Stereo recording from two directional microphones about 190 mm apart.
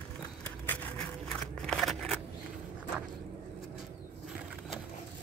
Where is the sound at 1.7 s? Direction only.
Centre (ahead or behind).